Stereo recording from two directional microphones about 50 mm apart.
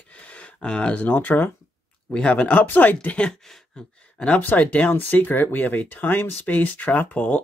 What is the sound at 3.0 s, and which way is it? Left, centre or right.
Speech, left.